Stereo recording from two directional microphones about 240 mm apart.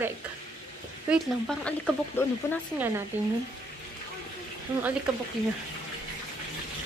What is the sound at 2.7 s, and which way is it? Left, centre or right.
Speech, centre.